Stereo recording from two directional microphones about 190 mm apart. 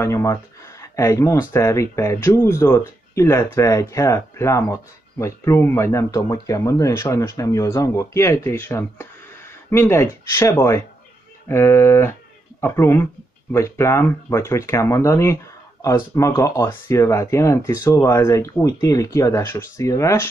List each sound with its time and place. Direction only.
0.0 s speech: 15° left (ahead or behind)